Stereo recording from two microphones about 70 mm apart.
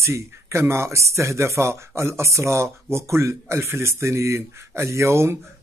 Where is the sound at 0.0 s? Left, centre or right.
Right.